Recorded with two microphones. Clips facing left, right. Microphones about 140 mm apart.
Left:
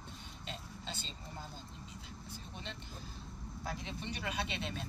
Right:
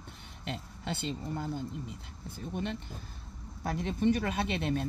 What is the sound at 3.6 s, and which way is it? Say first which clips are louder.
Speech: right 13 dB; 55° right (ahead or behind).